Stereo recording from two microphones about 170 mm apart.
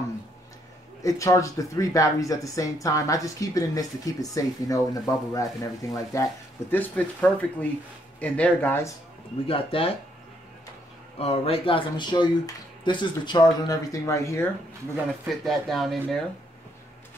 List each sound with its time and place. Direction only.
1.0 s speech: 20° left (ahead or behind)
9.5 s speech: 30° left (ahead or behind)
11.1 s speech: 35° left (ahead or behind); by 14.5 s 15° left (ahead or behind)
15.2 s speech: centre (ahead or behind)